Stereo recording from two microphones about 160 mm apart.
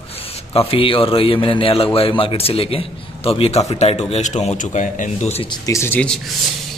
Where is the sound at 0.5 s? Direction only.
35° left (ahead or behind).